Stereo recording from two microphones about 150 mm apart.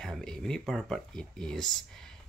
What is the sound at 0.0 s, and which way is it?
Speech, 5° left (ahead or behind).